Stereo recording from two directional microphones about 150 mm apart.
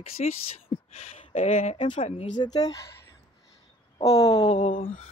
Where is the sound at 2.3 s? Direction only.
25° left (ahead or behind).